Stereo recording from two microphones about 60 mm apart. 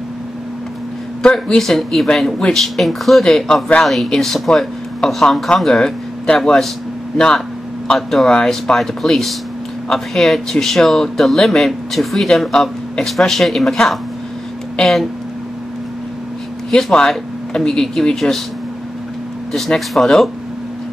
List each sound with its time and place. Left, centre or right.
1.6 s speech: centre
8.7 s speech: centre
16.7 s speech: centre
19.5 s speech: centre